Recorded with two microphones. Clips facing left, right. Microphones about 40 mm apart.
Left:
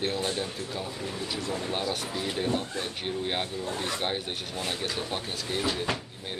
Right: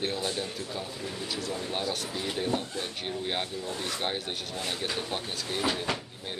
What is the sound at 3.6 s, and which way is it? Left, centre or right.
Speech, left.